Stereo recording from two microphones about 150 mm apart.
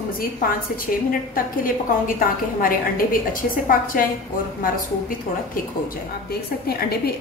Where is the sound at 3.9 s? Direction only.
70° left (ahead or behind).